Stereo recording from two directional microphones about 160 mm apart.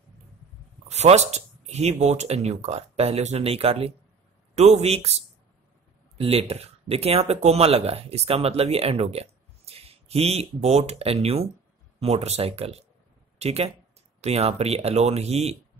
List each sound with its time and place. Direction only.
0.8 s speech: 45° right (ahead or behind)